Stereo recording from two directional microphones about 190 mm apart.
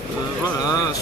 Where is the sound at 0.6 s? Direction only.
20° left (ahead or behind).